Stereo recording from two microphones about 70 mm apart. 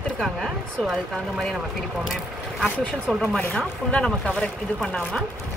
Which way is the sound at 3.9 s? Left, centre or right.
Centre.